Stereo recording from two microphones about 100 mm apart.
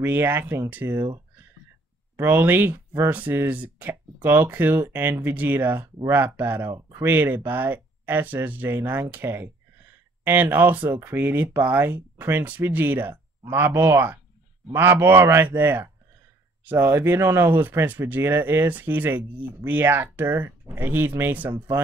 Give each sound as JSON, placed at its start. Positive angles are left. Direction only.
{"t": 0.0, "sound": "speech", "side_deg": -20}